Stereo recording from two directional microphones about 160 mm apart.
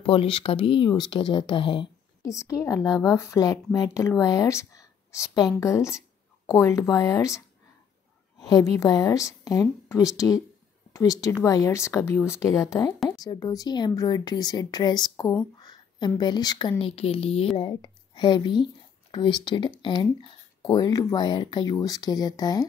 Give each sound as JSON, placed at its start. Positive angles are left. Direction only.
{"t": 0.0, "sound": "speech", "side_deg": 35}
{"t": 2.3, "sound": "speech", "side_deg": 20}
{"t": 8.4, "sound": "a sound", "side_deg": 20}
{"t": 8.7, "sound": "speech", "side_deg": 20}
{"t": 16.8, "sound": "a woman's voice", "side_deg": 40}